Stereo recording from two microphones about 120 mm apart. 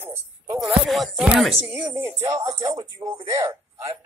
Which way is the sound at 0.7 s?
Centre (ahead or behind).